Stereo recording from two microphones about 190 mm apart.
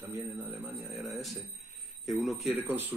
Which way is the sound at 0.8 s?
Centre (ahead or behind).